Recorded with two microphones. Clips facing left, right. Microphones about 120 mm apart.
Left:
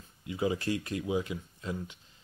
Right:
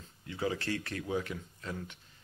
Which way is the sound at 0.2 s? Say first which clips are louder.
Left 4 dB; 15° left (ahead or behind).